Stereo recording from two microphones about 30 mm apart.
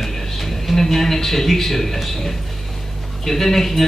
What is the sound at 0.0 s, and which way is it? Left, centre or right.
A man's voice, centre.